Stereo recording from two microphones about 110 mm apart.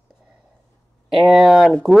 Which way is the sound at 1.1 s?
Centre (ahead or behind).